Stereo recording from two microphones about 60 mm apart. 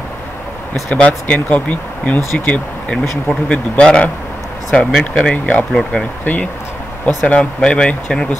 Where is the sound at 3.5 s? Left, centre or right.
Centre.